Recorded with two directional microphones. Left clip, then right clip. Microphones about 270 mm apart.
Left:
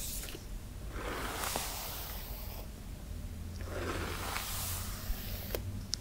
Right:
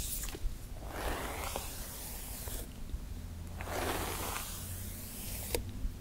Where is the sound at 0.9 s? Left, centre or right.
Centre.